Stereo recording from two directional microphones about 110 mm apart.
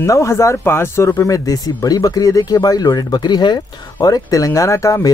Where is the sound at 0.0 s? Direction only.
25° left (ahead or behind).